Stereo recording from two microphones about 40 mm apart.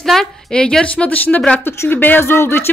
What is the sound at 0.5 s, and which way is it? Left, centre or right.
Speech, left.